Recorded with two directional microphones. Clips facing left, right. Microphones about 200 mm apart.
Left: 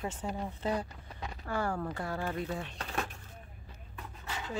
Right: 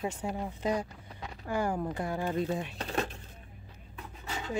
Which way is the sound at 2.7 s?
25° right (ahead or behind).